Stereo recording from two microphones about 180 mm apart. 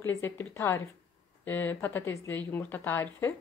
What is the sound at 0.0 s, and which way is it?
Speech, 15° left (ahead or behind).